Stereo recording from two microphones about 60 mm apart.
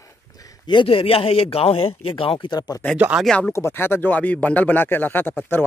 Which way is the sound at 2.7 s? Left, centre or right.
Left.